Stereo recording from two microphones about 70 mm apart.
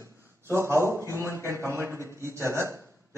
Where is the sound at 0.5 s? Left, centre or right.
Right.